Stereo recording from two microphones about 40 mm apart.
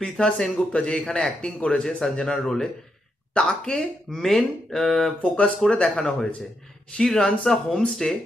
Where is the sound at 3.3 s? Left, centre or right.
Centre.